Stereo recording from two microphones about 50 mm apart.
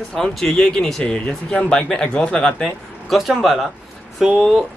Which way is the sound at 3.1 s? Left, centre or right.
Centre.